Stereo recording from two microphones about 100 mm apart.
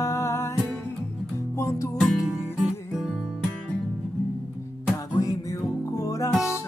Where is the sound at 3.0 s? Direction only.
Centre (ahead or behind).